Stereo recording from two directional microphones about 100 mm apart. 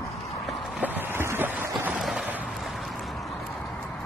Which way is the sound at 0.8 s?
20° right (ahead or behind).